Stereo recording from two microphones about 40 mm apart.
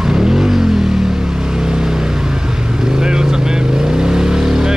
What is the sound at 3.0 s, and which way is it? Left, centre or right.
Vehicle, centre.